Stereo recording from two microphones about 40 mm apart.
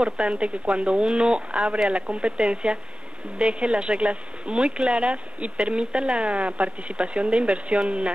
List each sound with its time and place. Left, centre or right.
0.0 s speech: right